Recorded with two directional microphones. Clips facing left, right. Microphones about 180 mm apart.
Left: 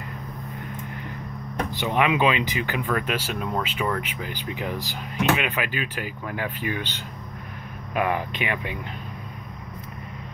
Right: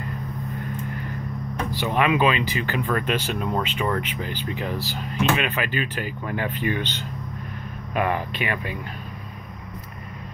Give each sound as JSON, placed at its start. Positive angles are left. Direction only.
{"t": 1.7, "sound": "speech", "side_deg": 20}